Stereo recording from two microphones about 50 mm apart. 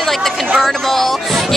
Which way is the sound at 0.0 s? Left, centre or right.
Centre.